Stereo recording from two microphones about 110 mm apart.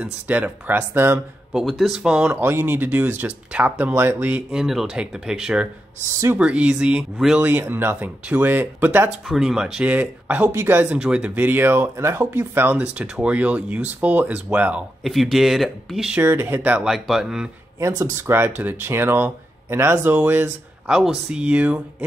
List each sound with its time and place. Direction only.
0.0 s speech: 15° right (ahead or behind)
1.5 s speech: centre (ahead or behind)
7.4 s speech: 20° right (ahead or behind)
9.3 s speech: 5° right (ahead or behind)
15.0 s speech: centre (ahead or behind)
16.1 s speech: 20° right (ahead or behind)
16.8 s speech: 5° right (ahead or behind)
17.7 s speech: 30° right (ahead or behind)
20.9 s speech: 5° right (ahead or behind)